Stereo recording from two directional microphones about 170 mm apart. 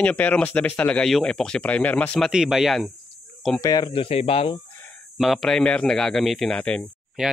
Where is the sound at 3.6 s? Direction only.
20° left (ahead or behind).